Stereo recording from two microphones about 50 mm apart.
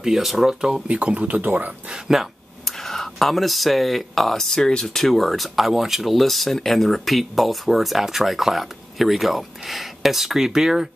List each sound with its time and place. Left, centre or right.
0.0 s speech: centre
0.8 s speech: right
2.1 s speech: centre
2.8 s speech: centre